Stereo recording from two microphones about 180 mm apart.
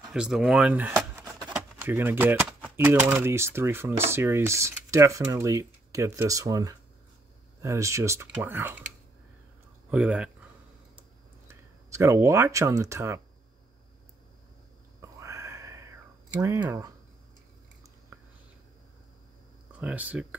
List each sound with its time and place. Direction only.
0.1 s a sound: 5° right (ahead or behind)
1.5 s speech: 10° right (ahead or behind)
9.8 s speech: 10° right (ahead or behind)
11.0 s a sound: 15° right (ahead or behind)
15.0 s whispering: 15° right (ahead or behind)
19.7 s speech: 5° right (ahead or behind)